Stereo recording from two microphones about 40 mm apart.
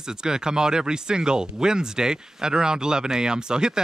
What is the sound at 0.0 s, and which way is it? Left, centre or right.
Speech, centre.